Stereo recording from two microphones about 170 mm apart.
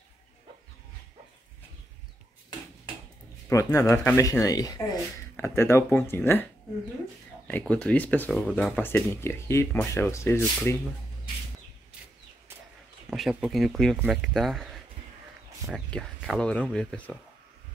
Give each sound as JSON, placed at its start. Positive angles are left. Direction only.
{"t": 3.4, "sound": "speech", "side_deg": 20}
{"t": 7.4, "sound": "speech", "side_deg": 5}
{"t": 13.1, "sound": "speech", "side_deg": 0}